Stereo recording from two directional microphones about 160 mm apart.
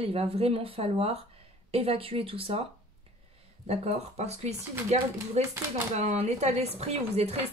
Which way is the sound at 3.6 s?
40° right (ahead or behind).